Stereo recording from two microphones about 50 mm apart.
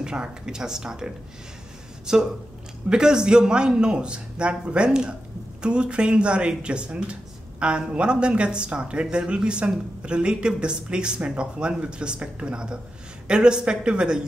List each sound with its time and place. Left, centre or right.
0.0 s a man's voice: centre